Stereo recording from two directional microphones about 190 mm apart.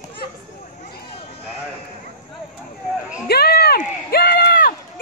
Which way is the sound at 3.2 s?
55° left (ahead or behind).